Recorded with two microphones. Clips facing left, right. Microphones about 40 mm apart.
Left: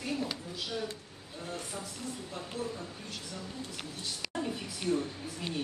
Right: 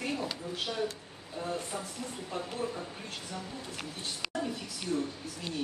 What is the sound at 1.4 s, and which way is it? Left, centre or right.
Speech, right.